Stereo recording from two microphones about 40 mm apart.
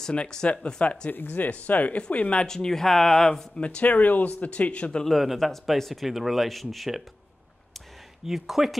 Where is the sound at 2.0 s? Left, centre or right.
Left.